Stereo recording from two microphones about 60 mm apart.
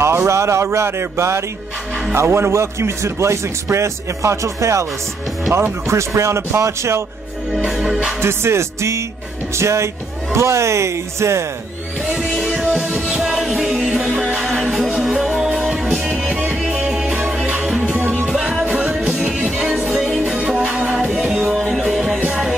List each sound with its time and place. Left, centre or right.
0.0 s speech: right
7.6 s music: centre
8.2 s speech: right
12.4 s music: centre
12.6 s music: right
13.1 s music: centre
15.0 s music: centre
16.1 s music: right
18.3 s music: centre
21.9 s music: centre